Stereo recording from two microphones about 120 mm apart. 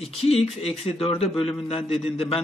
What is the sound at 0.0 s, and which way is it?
A man's voice, 55° left (ahead or behind).